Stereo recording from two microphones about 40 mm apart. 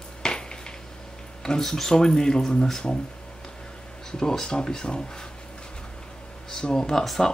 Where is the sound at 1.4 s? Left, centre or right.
Centre.